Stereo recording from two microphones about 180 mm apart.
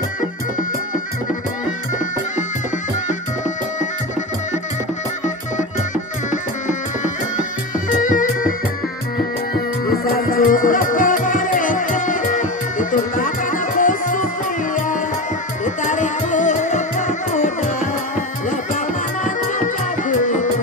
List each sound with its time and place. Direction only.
6.3 s music: 45° left (ahead or behind)
10.1 s music: 50° left (ahead or behind)
15.6 s music: 45° left (ahead or behind)
19.2 s music: 45° left (ahead or behind)